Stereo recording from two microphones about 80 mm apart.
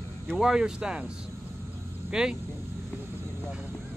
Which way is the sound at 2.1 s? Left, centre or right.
Centre.